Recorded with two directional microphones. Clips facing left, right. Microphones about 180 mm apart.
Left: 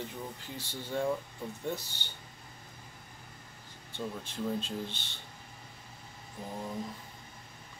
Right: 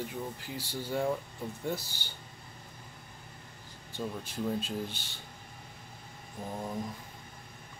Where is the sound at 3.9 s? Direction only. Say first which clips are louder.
Right 2 dB; 10° right (ahead or behind).